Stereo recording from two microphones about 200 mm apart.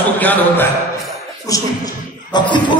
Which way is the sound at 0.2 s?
10° left (ahead or behind).